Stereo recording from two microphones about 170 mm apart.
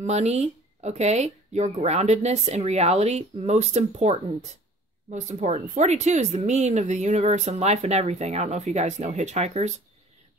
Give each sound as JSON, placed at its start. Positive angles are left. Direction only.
{"t": 0.0, "sound": "speech", "side_deg": -40}